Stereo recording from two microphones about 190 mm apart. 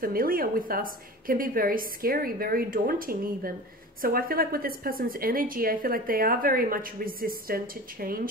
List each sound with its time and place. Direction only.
0.0 s a woman's voice: 50° right (ahead or behind)